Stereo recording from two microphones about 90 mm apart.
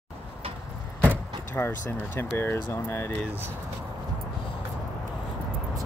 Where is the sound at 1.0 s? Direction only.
25° left (ahead or behind).